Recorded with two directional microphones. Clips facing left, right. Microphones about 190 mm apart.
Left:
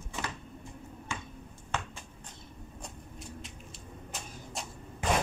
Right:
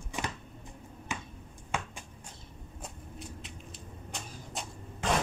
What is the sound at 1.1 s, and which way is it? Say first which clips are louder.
Finger snapping: right 2 dB; 15° right (ahead or behind).